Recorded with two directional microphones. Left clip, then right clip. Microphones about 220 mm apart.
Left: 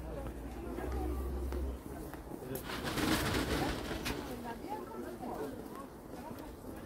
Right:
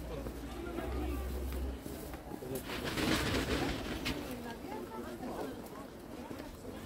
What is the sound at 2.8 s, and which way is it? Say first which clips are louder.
Vehicle: even; 50° left (ahead or behind).